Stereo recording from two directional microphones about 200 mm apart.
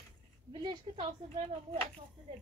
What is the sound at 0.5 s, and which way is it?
Speech, 25° right (ahead or behind).